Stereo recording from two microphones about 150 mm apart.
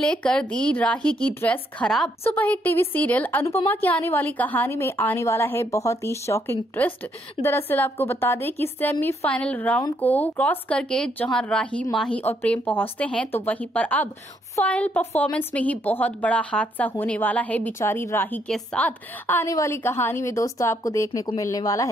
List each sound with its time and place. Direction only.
0.0 s a woman's voice: 5° left (ahead or behind); by 21.8 s 25° left (ahead or behind)